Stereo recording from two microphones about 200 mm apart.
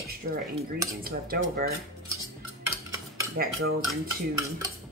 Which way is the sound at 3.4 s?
50° right (ahead or behind).